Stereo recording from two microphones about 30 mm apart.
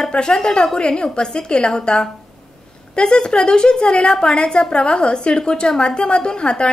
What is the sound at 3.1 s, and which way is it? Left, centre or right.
A woman's voice, left.